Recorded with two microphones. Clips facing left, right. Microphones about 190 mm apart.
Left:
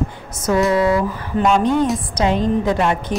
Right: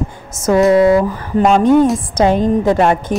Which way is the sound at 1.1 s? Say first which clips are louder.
Right 4 dB; 45° right (ahead or behind).